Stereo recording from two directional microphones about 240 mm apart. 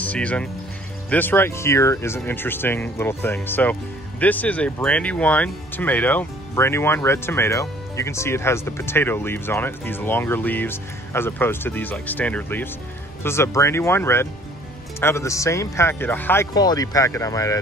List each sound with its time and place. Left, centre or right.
0.0 s speech: centre